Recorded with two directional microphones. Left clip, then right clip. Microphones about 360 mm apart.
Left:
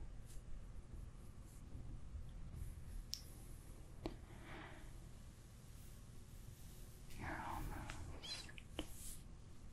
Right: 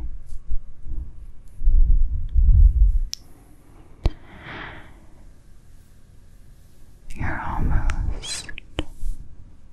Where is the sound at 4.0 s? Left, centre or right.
Right.